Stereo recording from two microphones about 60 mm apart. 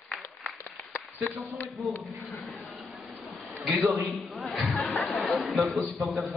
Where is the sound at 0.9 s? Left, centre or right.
Left.